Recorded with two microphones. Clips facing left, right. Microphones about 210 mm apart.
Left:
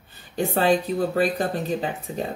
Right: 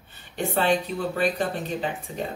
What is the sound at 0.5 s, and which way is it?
Speech, 40° left (ahead or behind).